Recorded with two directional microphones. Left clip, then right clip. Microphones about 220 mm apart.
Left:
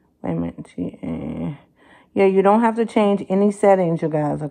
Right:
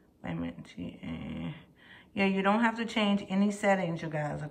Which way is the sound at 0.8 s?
20° left (ahead or behind).